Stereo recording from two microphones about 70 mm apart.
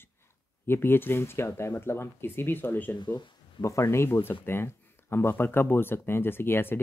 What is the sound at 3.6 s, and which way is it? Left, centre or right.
Speech, left.